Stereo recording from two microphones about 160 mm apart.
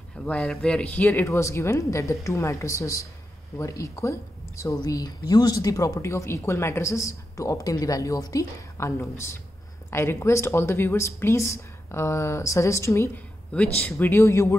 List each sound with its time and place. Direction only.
0.2 s speech: 5° left (ahead or behind)